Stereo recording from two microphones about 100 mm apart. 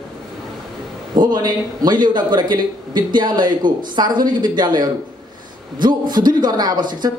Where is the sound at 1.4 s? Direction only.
45° right (ahead or behind).